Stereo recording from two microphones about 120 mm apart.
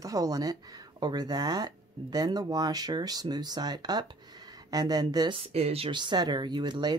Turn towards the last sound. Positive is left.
turn(degrees=-35)  # may be behind; listen again after turning